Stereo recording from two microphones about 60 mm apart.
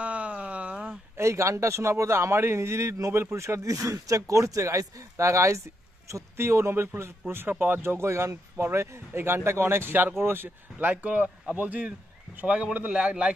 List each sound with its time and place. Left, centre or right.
0.0 s a sound: right
1.1 s speech: right
3.1 s speech: right
12.4 s a man's voice: centre